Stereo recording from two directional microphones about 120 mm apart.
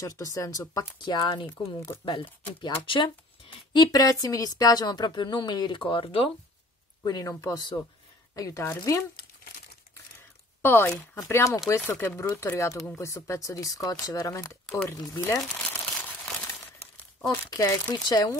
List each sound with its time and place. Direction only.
0.0 s speech: 30° left (ahead or behind); by 6.3 s 45° left (ahead or behind)
7.0 s speech: 30° left (ahead or behind)
10.6 s speech: 20° left (ahead or behind)
17.3 s speech: 30° left (ahead or behind)